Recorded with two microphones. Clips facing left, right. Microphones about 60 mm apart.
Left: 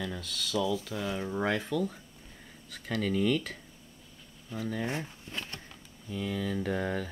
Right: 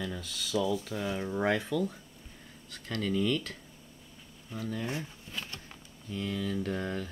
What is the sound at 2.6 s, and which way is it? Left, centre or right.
Speech, centre.